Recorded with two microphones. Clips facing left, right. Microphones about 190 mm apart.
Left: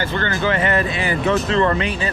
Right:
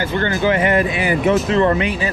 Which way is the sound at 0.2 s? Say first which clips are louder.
Right 4 dB; 15° right (ahead or behind).